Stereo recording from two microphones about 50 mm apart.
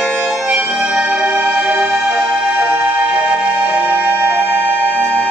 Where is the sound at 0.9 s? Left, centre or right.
Right.